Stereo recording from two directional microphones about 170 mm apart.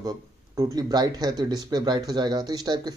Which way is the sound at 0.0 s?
20° right (ahead or behind).